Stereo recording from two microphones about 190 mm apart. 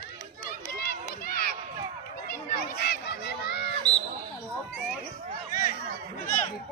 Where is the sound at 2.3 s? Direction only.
50° left (ahead or behind).